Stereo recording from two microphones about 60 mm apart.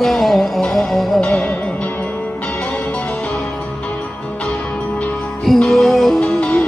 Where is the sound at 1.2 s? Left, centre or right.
Left.